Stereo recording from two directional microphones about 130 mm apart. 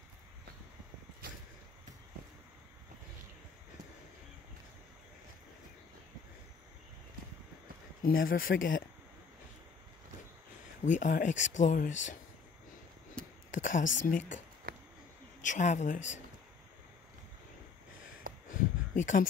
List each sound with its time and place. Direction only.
8.0 s speech: 90° left
10.9 s speech: 80° left
13.5 s speech: 90° left
15.4 s speech: 75° left (ahead or behind)
18.5 s a sound: 90° left